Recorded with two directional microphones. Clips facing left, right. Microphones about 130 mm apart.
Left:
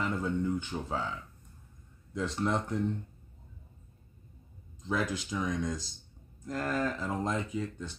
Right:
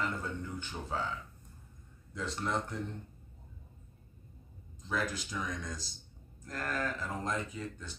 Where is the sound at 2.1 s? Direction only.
15° left (ahead or behind).